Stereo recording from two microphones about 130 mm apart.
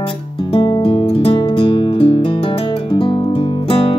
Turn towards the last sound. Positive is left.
turn(degrees=45)  # may be behind; listen again after turning